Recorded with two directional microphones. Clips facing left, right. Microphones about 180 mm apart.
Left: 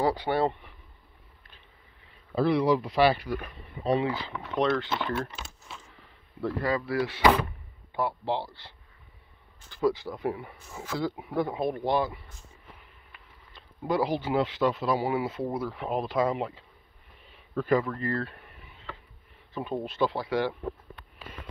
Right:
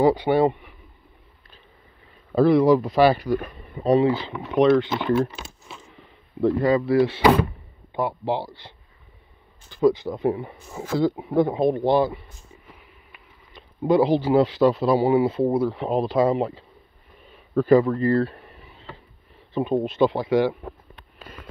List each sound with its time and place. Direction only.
0.0 s speech: 20° right (ahead or behind)
2.3 s speech: 45° right (ahead or behind)
4.1 s speech: 20° right (ahead or behind)
5.4 s a sound: 20° right (ahead or behind)
8.3 s speech: 15° right (ahead or behind); by 12.2 s 30° right (ahead or behind)
12.6 s speech: 15° right (ahead or behind); by 16.6 s 35° right (ahead or behind)
17.2 s a sound: 40° right (ahead or behind)
19.5 s speech: 20° right (ahead or behind)